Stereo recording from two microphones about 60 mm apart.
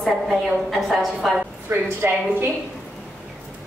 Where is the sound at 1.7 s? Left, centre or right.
Right.